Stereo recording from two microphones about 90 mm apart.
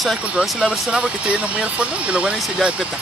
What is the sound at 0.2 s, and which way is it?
Speech, 10° right (ahead or behind).